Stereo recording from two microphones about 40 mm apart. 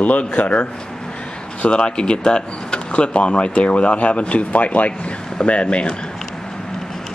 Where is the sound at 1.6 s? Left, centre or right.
Left.